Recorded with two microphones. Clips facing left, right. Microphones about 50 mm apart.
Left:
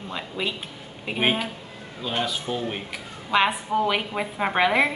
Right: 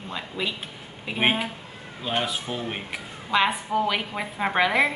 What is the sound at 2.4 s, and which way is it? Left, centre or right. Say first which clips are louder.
Speech: left 2 dB; centre.